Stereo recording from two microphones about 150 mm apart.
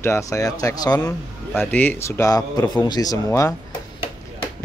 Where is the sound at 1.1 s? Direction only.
10° left (ahead or behind).